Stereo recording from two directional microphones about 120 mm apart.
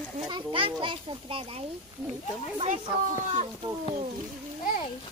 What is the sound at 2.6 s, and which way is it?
Speech, 90° right.